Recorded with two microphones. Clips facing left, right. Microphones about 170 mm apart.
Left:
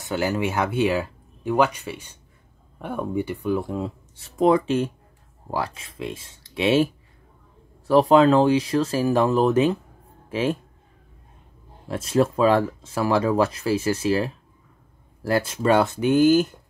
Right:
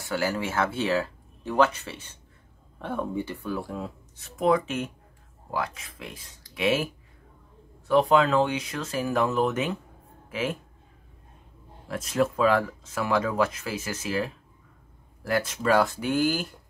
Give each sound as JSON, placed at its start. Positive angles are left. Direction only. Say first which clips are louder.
{"t": 0.0, "sound": "speech", "louder": "left 4 dB", "side_deg": 20}
{"t": 11.9, "sound": "speech", "louder": "left 5 dB", "side_deg": 30}